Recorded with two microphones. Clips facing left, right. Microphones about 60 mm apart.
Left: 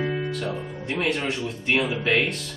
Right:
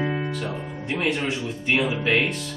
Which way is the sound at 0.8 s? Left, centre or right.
Centre.